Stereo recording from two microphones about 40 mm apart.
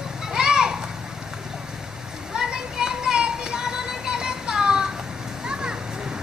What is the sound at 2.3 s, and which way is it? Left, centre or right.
Music, centre.